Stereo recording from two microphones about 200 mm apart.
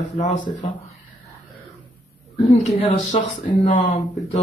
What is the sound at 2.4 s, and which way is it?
Speech, 30° left (ahead or behind).